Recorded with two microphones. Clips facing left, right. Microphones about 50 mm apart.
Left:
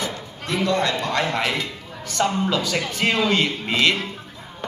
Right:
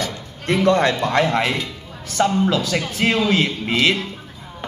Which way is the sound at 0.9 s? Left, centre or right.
Right.